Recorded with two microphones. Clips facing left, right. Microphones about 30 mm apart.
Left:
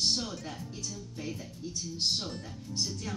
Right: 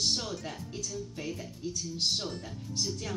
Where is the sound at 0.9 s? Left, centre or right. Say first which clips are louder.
Right 2 dB; right.